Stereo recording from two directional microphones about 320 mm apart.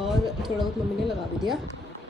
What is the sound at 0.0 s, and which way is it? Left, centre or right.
Speech, centre.